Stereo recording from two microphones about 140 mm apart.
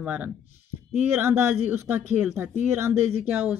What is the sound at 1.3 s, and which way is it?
Speech, 10° right (ahead or behind).